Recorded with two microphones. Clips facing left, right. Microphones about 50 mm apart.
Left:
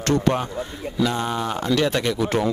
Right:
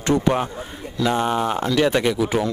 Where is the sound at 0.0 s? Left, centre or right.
Centre.